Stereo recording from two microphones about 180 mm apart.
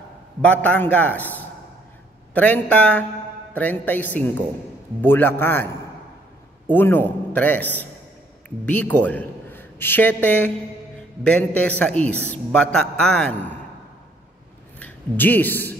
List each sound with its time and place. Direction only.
0.4 s a man's voice: 5° left (ahead or behind)
6.7 s a man's voice: 10° left (ahead or behind)
14.8 s speech: 10° left (ahead or behind)